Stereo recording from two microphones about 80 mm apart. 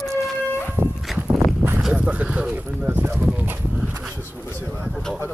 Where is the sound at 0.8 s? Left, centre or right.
Right.